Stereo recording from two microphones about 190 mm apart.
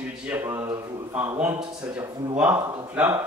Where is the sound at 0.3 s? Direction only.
10° right (ahead or behind).